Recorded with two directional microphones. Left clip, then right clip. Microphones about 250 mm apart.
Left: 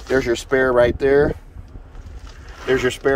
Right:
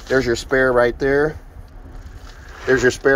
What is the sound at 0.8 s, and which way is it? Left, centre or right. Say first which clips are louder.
Speech: left 1 dB; centre.